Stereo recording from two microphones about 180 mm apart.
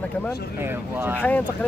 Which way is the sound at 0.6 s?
15° right (ahead or behind).